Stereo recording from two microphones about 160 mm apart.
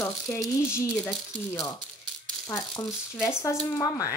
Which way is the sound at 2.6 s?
20° left (ahead or behind).